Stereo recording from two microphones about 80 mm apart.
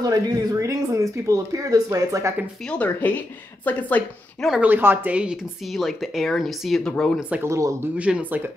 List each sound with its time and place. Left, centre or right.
0.0 s speech: right
2.7 s speech: centre
4.6 s speech: right
5.7 s speech: centre
7.2 s speech: centre
7.4 s speech: right
8.0 s speech: centre